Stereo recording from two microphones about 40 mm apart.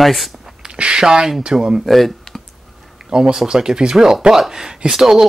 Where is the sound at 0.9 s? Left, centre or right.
Centre.